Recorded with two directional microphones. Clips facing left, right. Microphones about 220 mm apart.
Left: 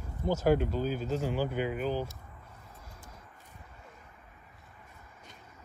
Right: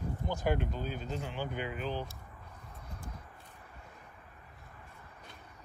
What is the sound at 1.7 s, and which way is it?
Speech, 45° left (ahead or behind).